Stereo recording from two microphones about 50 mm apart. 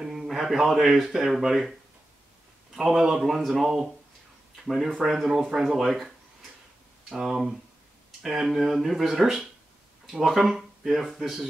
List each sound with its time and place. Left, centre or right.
0.0 s speech: centre